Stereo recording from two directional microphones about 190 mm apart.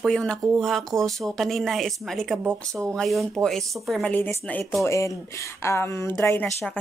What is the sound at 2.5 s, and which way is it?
Speech, 15° right (ahead or behind).